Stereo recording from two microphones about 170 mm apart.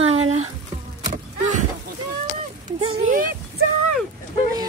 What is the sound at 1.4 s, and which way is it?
Speech, 45° right (ahead or behind).